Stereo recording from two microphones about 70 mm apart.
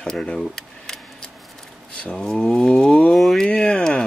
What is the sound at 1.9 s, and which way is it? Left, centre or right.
Speech, centre.